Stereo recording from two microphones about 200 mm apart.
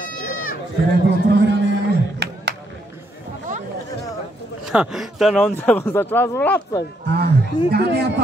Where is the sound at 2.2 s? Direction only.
55° right (ahead or behind).